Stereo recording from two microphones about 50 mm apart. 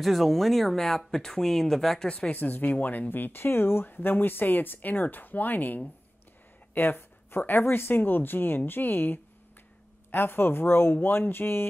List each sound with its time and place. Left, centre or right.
0.0 s speech: centre
2.0 s speech: left